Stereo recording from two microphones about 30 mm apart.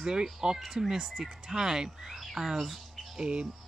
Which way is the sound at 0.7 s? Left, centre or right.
Centre.